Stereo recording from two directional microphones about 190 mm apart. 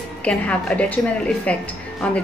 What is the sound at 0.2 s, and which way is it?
Speech, 5° left (ahead or behind).